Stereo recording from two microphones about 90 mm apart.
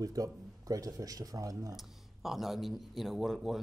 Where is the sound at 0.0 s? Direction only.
40° right (ahead or behind).